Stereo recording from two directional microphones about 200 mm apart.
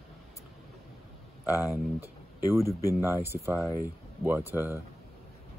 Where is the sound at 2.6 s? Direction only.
15° left (ahead or behind).